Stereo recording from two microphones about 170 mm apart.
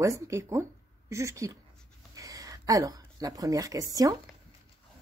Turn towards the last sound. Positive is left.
turn(degrees=-20)  # may be behind; listen again after turning